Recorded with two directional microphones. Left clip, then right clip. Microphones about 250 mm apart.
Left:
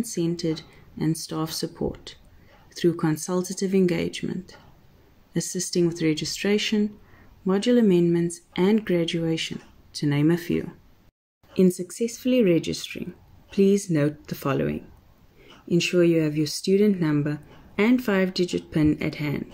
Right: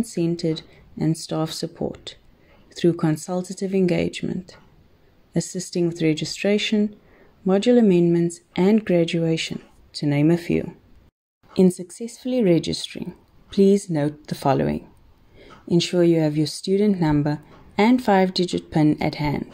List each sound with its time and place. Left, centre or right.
0.0 s speech: centre